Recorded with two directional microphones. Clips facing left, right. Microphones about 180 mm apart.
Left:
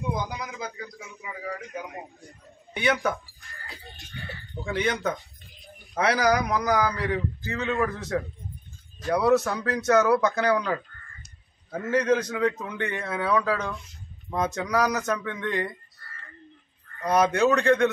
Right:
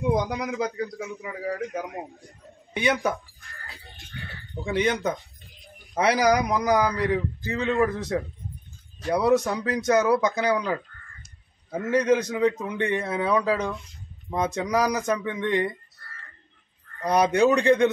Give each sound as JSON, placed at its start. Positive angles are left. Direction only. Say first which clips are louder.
{"t": 0.1, "sound": "a man's voice", "louder": "right 7 dB", "side_deg": -75}
{"t": 2.7, "sound": "a man's voice", "louder": "right 1 dB", "side_deg": -15}
{"t": 4.6, "sound": "a man's voice", "louder": "right 3 dB", "side_deg": -15}
{"t": 5.9, "sound": "a man's voice", "louder": "right 2 dB", "side_deg": -15}
{"t": 17.0, "sound": "a man's voice", "louder": "right 1 dB", "side_deg": -15}